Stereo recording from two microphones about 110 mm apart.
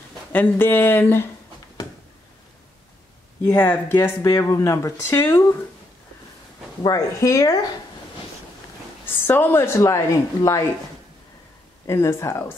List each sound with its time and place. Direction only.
0.3 s a woman's voice: 15° left (ahead or behind)
3.4 s a woman's voice: 20° left (ahead or behind)
4.3 s a woman's voice: 30° left (ahead or behind)
6.8 s speech: 30° left (ahead or behind)
9.0 s a woman's voice: 20° left (ahead or behind)
11.8 s a woman's voice: 25° left (ahead or behind)